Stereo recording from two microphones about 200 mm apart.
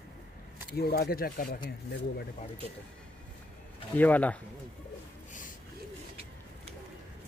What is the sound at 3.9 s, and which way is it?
Speech, 10° left (ahead or behind).